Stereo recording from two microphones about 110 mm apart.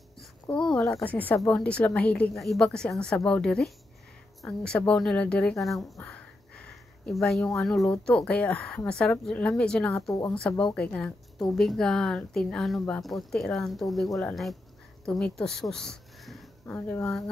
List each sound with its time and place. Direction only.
0.5 s speech: 10° left (ahead or behind)
2.3 s a woman's voice: centre (ahead or behind)
16.6 s speech: 20° left (ahead or behind)